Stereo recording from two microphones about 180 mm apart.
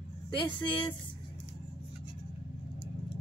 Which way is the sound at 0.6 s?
30° left (ahead or behind).